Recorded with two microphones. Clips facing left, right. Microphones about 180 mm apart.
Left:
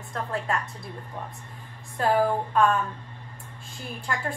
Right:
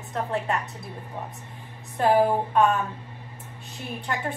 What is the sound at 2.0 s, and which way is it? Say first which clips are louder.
Speech: right 3 dB; 20° right (ahead or behind).